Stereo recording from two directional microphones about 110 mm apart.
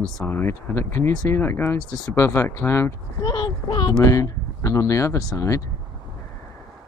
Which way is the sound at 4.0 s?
30° left (ahead or behind).